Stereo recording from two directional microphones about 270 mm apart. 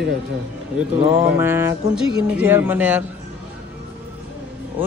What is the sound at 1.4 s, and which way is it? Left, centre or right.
Speech, centre.